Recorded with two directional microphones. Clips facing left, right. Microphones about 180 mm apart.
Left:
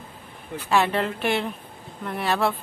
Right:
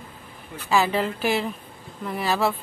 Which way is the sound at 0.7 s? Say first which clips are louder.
Even; centre (ahead or behind).